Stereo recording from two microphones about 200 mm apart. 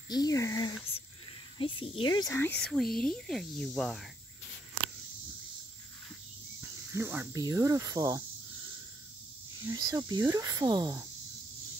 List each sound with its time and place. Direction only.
0.1 s speech: 20° left (ahead or behind); by 4.0 s centre (ahead or behind)
6.6 s speech: 10° right (ahead or behind)
9.6 s speech: 20° right (ahead or behind)